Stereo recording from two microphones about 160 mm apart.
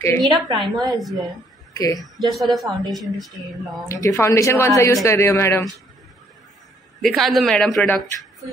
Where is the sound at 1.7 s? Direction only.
20° left (ahead or behind).